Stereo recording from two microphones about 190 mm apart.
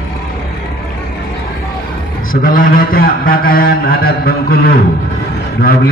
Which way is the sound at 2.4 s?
45° left (ahead or behind).